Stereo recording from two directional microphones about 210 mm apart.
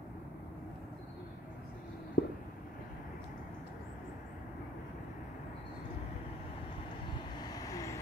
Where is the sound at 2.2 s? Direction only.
45° left (ahead or behind).